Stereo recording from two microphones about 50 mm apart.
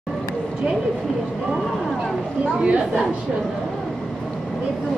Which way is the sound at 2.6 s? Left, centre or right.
Right.